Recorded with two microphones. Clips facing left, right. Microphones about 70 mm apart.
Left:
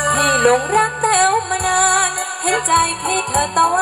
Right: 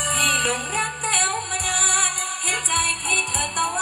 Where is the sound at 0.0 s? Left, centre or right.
Left.